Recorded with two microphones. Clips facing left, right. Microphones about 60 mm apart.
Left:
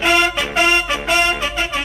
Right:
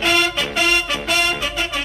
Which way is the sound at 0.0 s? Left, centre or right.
Centre.